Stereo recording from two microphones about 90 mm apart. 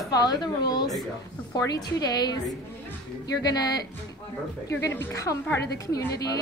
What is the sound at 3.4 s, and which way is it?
Speech, 45° left (ahead or behind).